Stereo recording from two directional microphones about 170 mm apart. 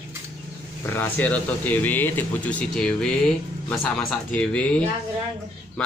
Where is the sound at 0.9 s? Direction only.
10° left (ahead or behind).